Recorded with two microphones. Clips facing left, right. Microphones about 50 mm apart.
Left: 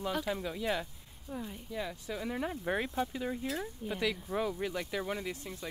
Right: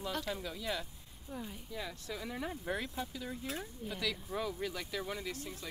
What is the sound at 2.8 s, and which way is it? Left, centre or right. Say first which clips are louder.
Speech: left 6 dB; left.